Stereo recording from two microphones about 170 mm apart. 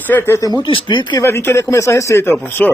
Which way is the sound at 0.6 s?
30° left (ahead or behind).